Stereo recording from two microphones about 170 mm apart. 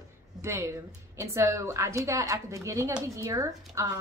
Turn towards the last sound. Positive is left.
turn(degrees=-20)  # may be behind; listen again after turning